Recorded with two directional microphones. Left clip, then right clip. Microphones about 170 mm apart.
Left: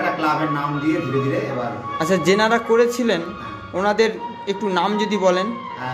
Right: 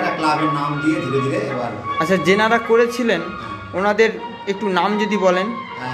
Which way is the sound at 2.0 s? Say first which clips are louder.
Right 1 dB; 15° left (ahead or behind).